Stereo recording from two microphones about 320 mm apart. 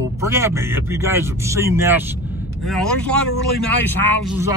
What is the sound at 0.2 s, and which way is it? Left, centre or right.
A man's voice, centre.